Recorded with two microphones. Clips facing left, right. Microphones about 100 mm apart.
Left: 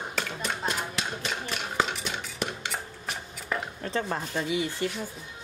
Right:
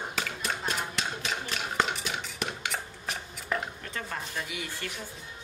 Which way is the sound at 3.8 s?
30° left (ahead or behind).